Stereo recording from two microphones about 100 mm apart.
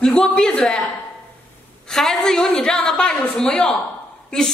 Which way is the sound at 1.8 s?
5° left (ahead or behind).